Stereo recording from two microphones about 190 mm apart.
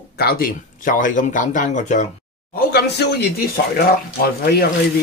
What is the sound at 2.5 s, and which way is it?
Speech, 60° left (ahead or behind).